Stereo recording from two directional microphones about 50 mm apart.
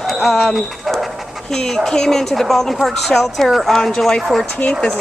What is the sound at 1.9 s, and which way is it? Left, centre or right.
Speech, centre.